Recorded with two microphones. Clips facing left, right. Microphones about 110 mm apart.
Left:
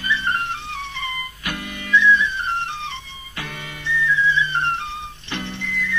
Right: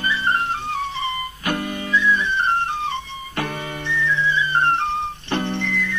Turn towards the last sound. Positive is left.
turn(degrees=-60)  # may be behind; listen again after turning